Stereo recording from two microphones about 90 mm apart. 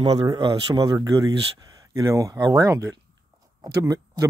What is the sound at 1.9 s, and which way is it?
Speech, 40° right (ahead or behind).